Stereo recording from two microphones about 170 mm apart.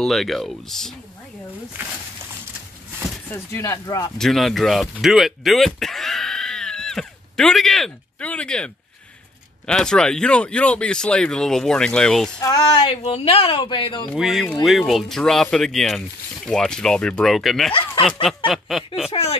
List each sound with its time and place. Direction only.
0.0 s speech: centre (ahead or behind)
3.3 s speech: 15° left (ahead or behind)
4.2 s speech: centre (ahead or behind)
12.4 s speech: 20° left (ahead or behind)
12.8 s speech: 35° left (ahead or behind)
14.1 s speech: centre (ahead or behind)
19.1 s speech: 35° left (ahead or behind)